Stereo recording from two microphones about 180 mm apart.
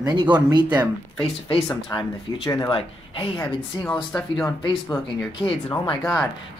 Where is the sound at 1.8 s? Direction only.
20° left (ahead or behind).